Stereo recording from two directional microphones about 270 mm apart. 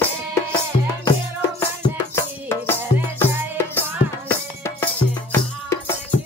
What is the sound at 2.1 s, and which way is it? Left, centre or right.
Music, centre.